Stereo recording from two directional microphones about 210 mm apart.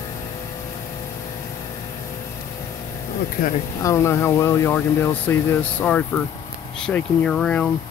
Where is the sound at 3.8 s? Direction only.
15° left (ahead or behind).